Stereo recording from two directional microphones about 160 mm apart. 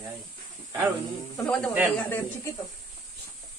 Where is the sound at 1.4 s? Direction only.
5° left (ahead or behind).